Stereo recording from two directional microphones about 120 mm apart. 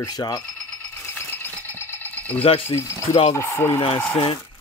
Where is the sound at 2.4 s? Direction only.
50° left (ahead or behind).